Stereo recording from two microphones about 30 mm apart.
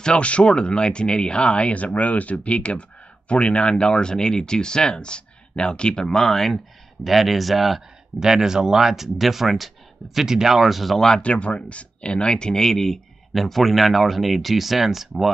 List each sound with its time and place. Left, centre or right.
0.2 s speech: left; by 7.8 s centre
8.2 s speech: centre
10.2 s speech: centre
10.5 s speech: centre
11.0 s speech: left
11.2 s speech: left
12.5 s speech: centre
13.3 s speech: centre